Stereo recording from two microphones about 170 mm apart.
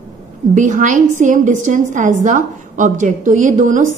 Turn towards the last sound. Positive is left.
turn(degrees=-50)  # may be behind; listen again after turning